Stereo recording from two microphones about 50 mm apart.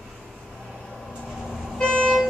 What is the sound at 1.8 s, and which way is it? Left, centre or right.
Vehicle, centre.